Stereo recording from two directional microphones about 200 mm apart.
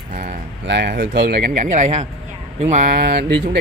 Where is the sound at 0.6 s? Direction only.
60° right (ahead or behind).